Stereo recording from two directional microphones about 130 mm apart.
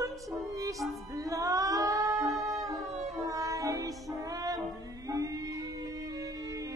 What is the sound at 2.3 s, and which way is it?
Music, 25° right (ahead or behind).